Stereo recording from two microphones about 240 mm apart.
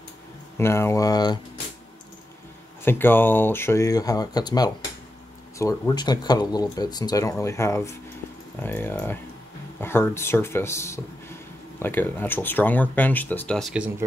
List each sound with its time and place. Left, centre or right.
0.6 s speech: centre
2.8 s speech: centre